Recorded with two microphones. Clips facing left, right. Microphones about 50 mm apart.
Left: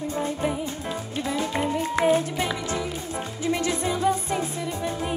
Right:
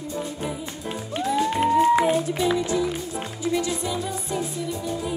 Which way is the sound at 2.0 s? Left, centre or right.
Left.